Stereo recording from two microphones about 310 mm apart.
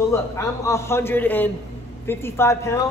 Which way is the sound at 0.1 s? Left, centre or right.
Centre.